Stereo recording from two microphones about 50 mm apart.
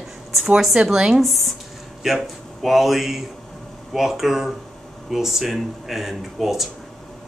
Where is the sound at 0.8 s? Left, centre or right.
Centre.